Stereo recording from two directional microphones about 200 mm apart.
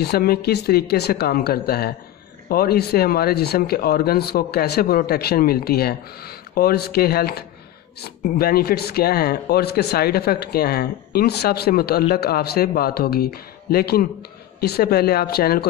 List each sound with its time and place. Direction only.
0.0 s speech: 50° left (ahead or behind)